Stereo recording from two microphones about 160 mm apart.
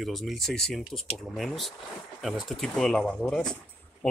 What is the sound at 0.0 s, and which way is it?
Speech, centre (ahead or behind).